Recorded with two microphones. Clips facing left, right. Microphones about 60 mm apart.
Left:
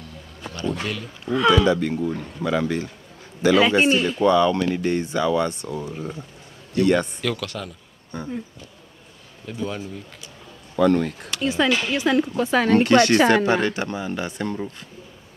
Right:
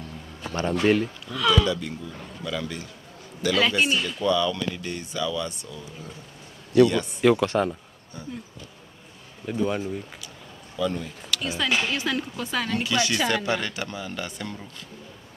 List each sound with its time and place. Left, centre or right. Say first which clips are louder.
0.5 s a man's voice: right 5 dB; right
1.2 s speech: left 5 dB; left
1.8 s speech: left 11 dB; left
3.4 s speech: left 6 dB; left
3.7 s speech: left 6 dB; left
7.2 s speech: right 8 dB; right
8.1 s speech: left 8 dB; left
9.5 s speech: right 3 dB; centre
10.8 s speech: left 9 dB; left
11.2 s speech: left 3 dB; left
12.7 s speech: left 11 dB; left